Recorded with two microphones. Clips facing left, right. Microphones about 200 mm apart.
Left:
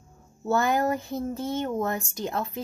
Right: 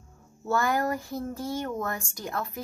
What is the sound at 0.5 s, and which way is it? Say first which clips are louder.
Speech: left 3 dB; 25° left (ahead or behind).